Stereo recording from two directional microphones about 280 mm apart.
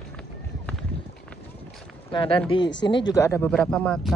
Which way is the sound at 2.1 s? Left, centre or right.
Centre.